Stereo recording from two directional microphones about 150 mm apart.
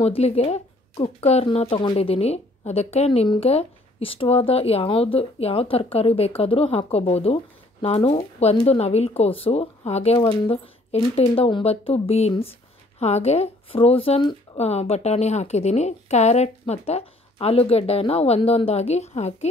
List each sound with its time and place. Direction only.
0.0 s a woman's voice: 40° left (ahead or behind)